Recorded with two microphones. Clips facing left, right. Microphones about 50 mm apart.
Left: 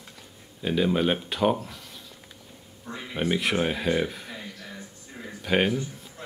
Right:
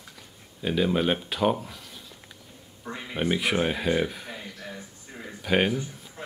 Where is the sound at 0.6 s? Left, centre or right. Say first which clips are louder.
Even; centre.